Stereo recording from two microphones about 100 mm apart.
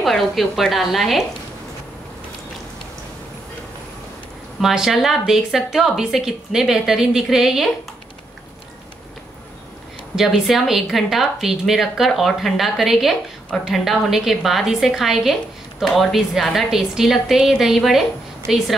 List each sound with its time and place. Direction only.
0.0 s a woman's voice: centre (ahead or behind)
4.6 s a woman's voice: 5° right (ahead or behind)
10.1 s a woman's voice: 5° right (ahead or behind)